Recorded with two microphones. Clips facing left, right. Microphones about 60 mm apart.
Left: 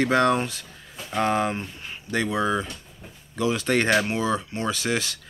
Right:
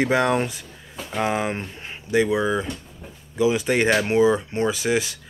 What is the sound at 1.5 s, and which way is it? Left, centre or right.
Speech, right.